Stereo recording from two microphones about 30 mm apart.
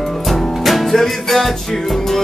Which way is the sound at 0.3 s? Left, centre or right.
Centre.